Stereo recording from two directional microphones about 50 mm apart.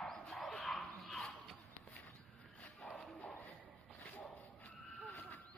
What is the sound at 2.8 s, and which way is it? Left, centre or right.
Dog, left.